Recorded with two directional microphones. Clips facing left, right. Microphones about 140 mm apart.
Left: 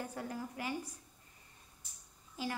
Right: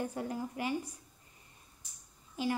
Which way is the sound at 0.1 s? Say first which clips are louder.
Right 4 dB; 20° right (ahead or behind).